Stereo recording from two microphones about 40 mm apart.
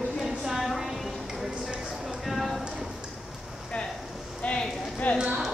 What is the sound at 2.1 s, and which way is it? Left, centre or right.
Clip-clop, centre.